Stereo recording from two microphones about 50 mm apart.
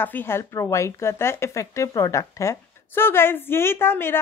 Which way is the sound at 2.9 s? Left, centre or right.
Left.